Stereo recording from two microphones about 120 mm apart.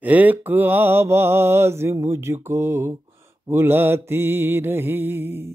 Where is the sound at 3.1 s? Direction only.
20° right (ahead or behind).